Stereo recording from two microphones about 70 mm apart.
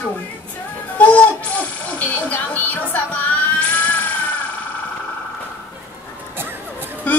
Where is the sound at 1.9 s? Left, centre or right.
Left.